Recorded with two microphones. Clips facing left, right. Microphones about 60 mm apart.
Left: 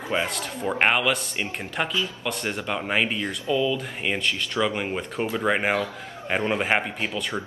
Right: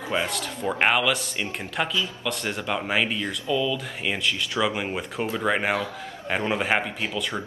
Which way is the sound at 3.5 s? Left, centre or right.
Centre.